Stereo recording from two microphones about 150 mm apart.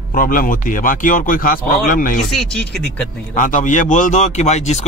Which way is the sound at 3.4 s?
60° left (ahead or behind).